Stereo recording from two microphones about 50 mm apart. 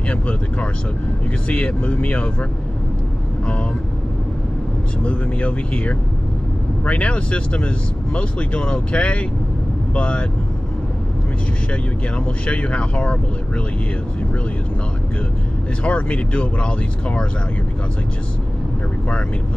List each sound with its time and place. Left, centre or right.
0.1 s speech: left
5.0 s speech: left
12.4 s speech: left
15.8 s speech: left